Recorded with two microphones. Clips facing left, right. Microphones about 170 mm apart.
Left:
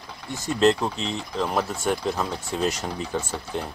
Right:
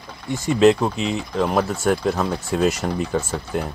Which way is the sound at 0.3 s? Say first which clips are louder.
Right 5 dB; 10° right (ahead or behind).